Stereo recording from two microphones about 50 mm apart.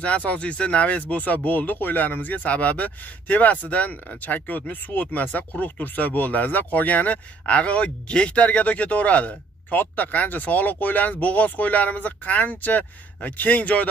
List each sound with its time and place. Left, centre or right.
0.0 s speech: left